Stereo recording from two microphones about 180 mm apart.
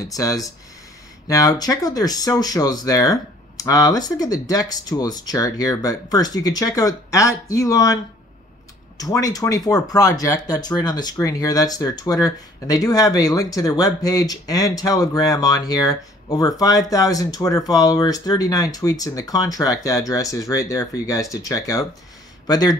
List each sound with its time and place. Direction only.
0.0 s speech: 20° left (ahead or behind)